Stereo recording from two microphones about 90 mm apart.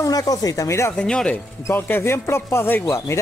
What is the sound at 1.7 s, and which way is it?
A man's voice, 25° left (ahead or behind).